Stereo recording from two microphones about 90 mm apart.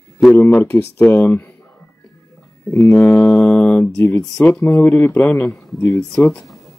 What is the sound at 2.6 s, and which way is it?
Speech, 25° left (ahead or behind).